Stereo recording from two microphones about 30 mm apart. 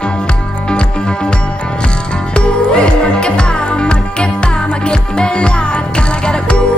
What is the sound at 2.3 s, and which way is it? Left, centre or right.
Music, left.